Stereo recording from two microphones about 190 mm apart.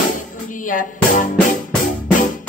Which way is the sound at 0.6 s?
45° left (ahead or behind).